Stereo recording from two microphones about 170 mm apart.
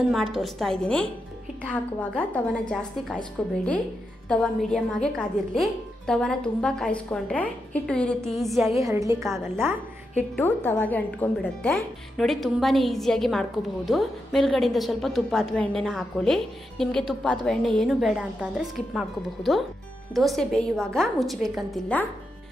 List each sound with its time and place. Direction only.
0.1 s a woman's voice: centre (ahead or behind)
8.7 s a woman's voice: 20° right (ahead or behind)
10.3 s speech: 10° left (ahead or behind)